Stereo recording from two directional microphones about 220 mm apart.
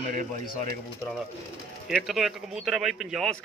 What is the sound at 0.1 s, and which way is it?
Speech, 40° right (ahead or behind).